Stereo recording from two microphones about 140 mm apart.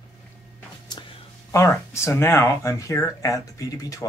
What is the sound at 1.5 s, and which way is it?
Speech, 20° left (ahead or behind).